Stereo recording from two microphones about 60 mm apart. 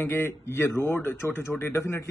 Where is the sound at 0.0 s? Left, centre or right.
Left.